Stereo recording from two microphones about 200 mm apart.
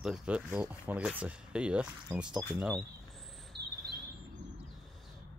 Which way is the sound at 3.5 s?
55° right (ahead or behind).